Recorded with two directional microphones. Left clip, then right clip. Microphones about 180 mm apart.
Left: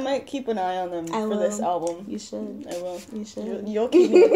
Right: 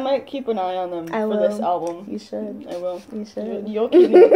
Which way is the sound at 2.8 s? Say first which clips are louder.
Right 5 dB; 20° left (ahead or behind).